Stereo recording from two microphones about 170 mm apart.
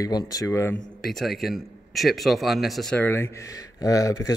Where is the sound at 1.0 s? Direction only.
Centre (ahead or behind).